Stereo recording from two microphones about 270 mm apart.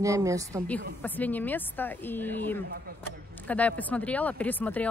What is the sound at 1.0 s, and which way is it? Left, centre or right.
Speech, centre.